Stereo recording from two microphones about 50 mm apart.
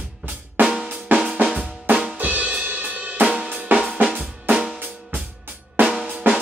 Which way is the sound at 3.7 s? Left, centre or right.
Right.